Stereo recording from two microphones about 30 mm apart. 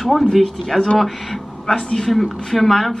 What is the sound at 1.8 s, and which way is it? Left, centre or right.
Speech, left.